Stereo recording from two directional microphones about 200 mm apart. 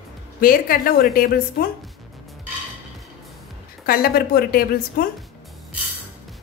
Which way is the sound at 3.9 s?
50° left (ahead or behind).